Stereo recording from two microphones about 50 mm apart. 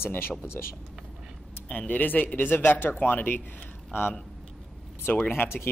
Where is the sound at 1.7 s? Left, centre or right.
Left.